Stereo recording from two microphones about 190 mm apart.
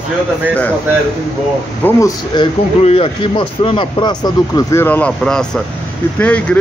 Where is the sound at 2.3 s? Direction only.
20° left (ahead or behind).